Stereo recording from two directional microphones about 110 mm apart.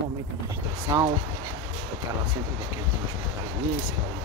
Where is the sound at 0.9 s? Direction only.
30° right (ahead or behind).